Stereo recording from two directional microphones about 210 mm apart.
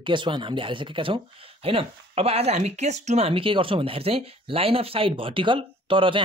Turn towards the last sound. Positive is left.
turn(degrees=-25)  # may be behind; listen again after turning